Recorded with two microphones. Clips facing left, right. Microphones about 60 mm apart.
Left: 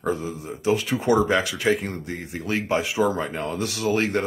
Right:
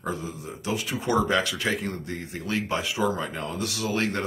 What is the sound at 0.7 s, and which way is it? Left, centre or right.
Speech, left.